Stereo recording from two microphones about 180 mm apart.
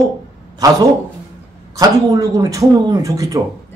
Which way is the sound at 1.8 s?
20° right (ahead or behind).